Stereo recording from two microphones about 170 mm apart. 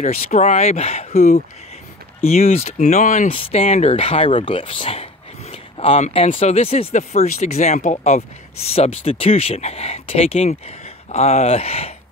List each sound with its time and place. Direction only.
0.0 s speech: 45° left (ahead or behind)
3.3 s speech: 35° left (ahead or behind)